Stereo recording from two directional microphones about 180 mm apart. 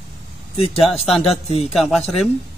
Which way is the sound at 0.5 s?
35° left (ahead or behind).